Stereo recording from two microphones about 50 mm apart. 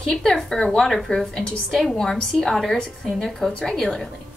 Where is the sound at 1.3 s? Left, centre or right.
Centre.